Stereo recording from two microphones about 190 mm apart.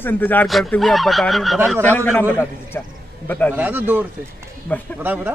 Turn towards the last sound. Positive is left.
turn(degrees=-10)  # may be behind; listen again after turning